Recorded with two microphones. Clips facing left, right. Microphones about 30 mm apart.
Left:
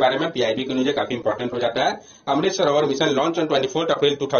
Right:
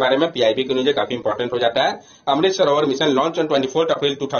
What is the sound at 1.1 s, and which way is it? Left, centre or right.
Speech, centre.